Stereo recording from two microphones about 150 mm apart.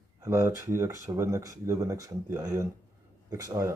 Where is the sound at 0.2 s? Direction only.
20° right (ahead or behind).